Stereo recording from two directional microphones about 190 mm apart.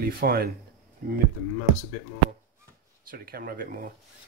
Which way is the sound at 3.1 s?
50° right (ahead or behind).